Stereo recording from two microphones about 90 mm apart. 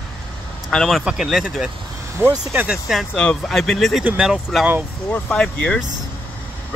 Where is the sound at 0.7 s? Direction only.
5° left (ahead or behind).